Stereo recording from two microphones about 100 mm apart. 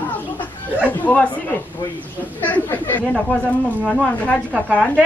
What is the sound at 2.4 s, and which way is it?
A woman's voice, 15° left (ahead or behind).